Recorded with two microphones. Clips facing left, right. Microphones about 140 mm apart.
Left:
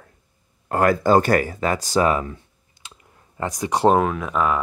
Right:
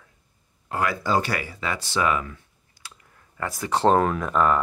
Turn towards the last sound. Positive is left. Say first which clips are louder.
# even
turn(degrees=5)  # may be behind; listen again after turning